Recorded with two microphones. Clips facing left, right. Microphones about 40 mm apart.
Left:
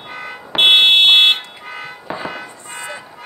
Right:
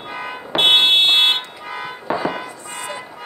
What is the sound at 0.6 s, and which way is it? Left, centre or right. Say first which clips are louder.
Fire alarm: left 3 dB; left.